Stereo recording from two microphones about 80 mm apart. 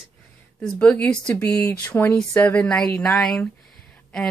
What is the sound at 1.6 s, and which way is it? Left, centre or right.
Speech, left.